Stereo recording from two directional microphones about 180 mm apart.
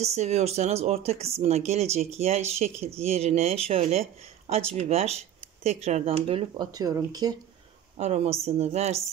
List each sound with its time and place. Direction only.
0.0 s speech: 35° right (ahead or behind); by 7.3 s 20° right (ahead or behind)
8.0 s speech: 35° right (ahead or behind)